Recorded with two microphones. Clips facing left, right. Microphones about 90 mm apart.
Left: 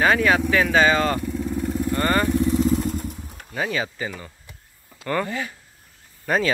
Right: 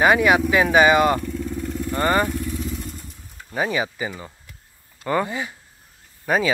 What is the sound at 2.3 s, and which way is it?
Speech, 30° left (ahead or behind).